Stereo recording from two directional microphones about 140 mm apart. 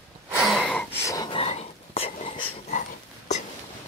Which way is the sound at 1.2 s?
40° left (ahead or behind).